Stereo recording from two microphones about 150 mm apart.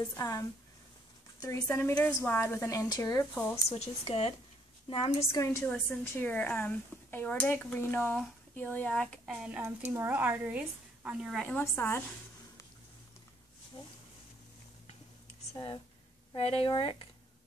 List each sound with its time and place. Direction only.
0.1 s a woman's voice: 25° left (ahead or behind)
3.3 s speech: 10° left (ahead or behind)
3.6 s speech: 40° left (ahead or behind)
5.3 s a woman's voice: 20° left (ahead or behind); by 9.6 s 5° right (ahead or behind)
9.6 s a woman's voice: 15° right (ahead or behind)
11.4 s speech: 10° left (ahead or behind)
15.5 s speech: 30° left (ahead or behind)